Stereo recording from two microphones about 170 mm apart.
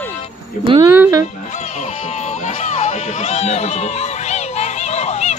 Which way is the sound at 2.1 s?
40° left (ahead or behind).